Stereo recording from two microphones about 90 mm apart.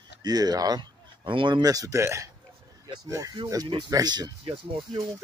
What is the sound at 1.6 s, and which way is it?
Speech, 45° right (ahead or behind).